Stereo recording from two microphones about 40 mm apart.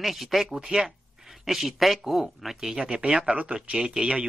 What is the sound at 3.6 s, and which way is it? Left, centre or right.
Speech, right.